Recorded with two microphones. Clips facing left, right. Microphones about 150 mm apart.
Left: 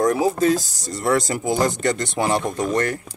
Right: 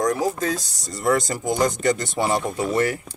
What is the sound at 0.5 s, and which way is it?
Speech, centre (ahead or behind).